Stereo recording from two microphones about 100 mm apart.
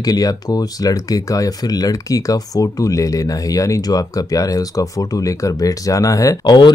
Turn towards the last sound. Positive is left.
turn(degrees=45)  # may be behind; listen again after turning